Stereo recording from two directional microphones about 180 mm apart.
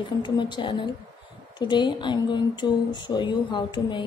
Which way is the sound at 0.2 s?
25° left (ahead or behind).